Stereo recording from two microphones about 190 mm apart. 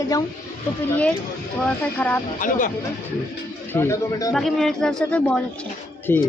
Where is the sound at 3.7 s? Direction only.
15° left (ahead or behind).